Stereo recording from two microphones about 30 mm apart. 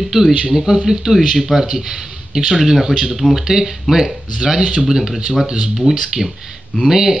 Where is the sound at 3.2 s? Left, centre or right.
Left.